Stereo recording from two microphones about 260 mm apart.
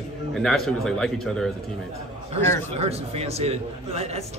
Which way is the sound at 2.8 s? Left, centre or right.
Right.